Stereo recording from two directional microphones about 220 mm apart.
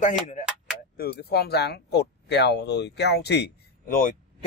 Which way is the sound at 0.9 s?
45° left (ahead or behind).